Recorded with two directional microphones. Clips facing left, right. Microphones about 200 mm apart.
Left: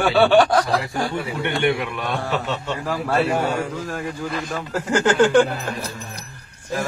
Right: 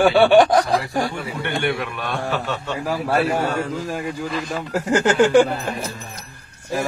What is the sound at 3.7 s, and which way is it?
Speech, 10° right (ahead or behind).